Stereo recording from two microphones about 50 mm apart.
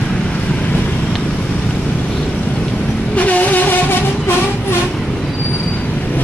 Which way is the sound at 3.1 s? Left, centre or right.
Left.